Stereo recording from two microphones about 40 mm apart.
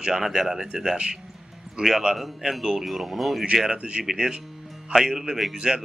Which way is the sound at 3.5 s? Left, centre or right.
Centre.